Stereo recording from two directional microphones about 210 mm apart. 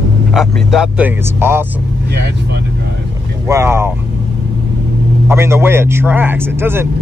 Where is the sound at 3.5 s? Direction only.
10° right (ahead or behind).